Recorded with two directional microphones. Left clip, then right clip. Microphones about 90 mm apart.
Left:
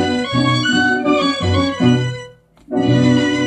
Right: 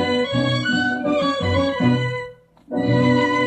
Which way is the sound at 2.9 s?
30° right (ahead or behind).